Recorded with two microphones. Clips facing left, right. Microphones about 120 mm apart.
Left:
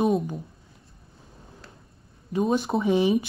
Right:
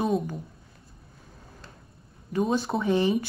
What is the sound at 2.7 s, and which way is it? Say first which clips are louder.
Speech: left 2 dB; 5° left (ahead or behind).